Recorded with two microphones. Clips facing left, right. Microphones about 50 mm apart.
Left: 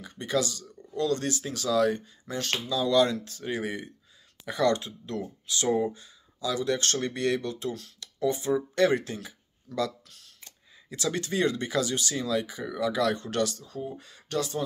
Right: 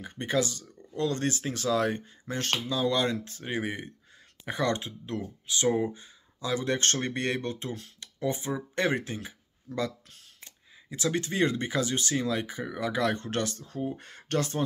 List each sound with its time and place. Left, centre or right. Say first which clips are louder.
0.0 s speech: even; right